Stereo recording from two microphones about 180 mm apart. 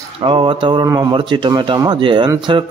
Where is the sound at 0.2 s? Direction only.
30° right (ahead or behind).